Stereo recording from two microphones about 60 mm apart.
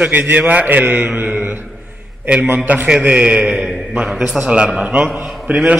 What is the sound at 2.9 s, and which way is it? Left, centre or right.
Speech, centre.